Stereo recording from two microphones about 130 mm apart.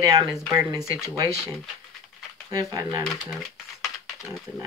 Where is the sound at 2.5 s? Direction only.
30° right (ahead or behind).